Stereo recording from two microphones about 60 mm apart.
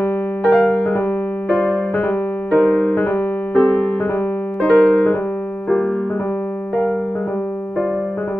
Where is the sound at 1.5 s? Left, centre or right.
Centre.